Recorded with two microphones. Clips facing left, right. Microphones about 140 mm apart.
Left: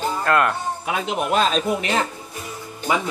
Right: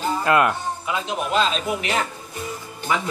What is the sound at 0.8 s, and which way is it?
Speech, 60° left (ahead or behind).